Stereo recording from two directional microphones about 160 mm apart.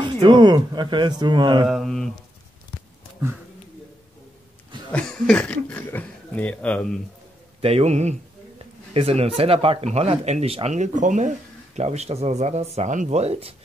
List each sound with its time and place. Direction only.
0.0 s speech: 30° right (ahead or behind)
1.7 s mantra: centre (ahead or behind)
4.9 s speech: 5° left (ahead or behind)
7.6 s speech: 40° right (ahead or behind)